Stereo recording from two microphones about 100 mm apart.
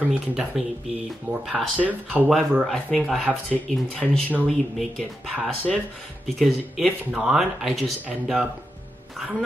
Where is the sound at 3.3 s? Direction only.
5° right (ahead or behind).